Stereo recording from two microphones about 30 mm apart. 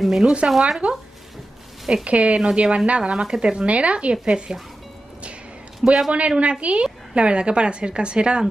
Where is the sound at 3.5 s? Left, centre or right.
Right.